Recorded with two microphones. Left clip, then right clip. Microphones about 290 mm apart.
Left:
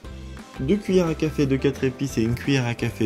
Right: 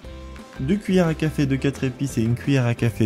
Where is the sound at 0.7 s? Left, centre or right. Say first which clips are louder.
Even; right.